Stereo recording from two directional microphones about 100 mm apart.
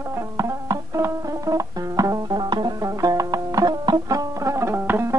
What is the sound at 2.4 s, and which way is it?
Music, 50° right (ahead or behind).